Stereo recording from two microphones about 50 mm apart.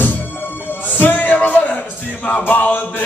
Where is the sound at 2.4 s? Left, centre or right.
Left.